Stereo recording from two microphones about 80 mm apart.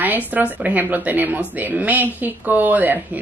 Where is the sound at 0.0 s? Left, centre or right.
Right.